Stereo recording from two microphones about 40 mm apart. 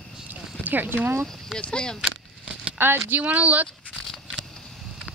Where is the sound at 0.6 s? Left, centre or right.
Right.